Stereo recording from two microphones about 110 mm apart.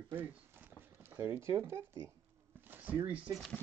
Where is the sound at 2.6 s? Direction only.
15° right (ahead or behind).